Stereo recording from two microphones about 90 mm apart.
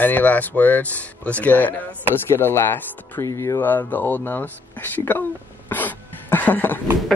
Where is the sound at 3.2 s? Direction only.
35° left (ahead or behind).